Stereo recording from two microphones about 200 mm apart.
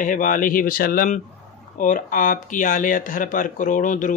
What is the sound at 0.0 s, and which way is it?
Speech, 40° left (ahead or behind).